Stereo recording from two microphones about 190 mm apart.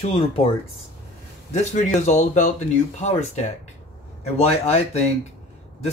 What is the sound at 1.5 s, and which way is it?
Speech, 40° left (ahead or behind).